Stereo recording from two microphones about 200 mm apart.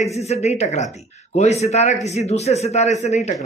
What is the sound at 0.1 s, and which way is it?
A man's voice, 30° left (ahead or behind).